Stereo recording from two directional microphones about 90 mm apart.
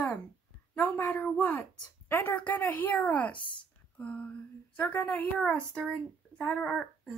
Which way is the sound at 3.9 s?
15° left (ahead or behind).